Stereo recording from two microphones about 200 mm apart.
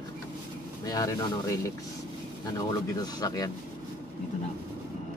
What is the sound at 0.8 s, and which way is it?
Speech, 15° left (ahead or behind).